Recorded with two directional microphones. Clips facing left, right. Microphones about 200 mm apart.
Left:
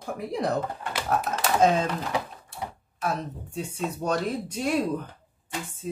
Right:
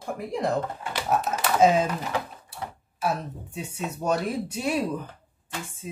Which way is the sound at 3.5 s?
10° right (ahead or behind).